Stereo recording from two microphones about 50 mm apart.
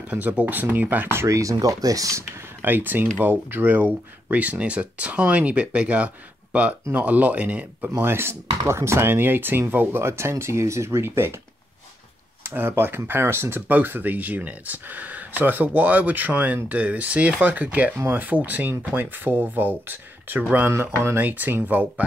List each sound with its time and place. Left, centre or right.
0.1 s speech: right
1.1 s speech: right
2.6 s speech: right
4.3 s speech: right
8.0 s speech: right
10.0 s speech: right
12.4 s speech: right
13.7 s speech: right